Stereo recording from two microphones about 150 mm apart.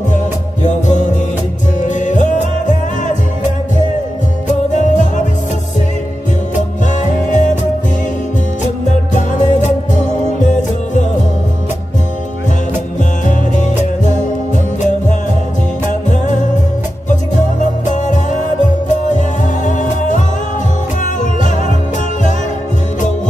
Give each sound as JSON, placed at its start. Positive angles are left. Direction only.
{"t": 0.1, "sound": "music", "side_deg": 55}
{"t": 4.5, "sound": "music", "side_deg": 55}
{"t": 6.5, "sound": "music", "side_deg": 55}
{"t": 8.8, "sound": "music", "side_deg": 55}
{"t": 13.3, "sound": "music", "side_deg": 55}
{"t": 16.1, "sound": "music", "side_deg": 55}